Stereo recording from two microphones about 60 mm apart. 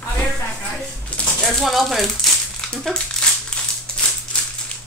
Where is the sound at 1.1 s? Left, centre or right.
Left.